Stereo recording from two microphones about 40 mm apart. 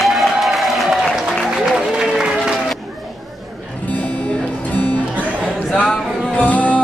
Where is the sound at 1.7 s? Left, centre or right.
Centre.